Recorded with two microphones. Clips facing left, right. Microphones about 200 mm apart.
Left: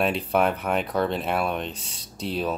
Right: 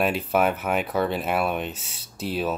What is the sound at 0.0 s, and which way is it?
Speech, 5° right (ahead or behind).